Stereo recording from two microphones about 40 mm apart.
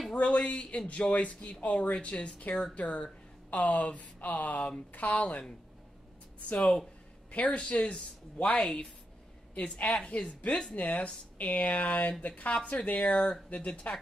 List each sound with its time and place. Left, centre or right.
0.1 s speech: left
6.5 s speech: left